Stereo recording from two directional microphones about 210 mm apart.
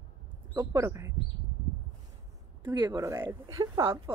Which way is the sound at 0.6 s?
15° right (ahead or behind).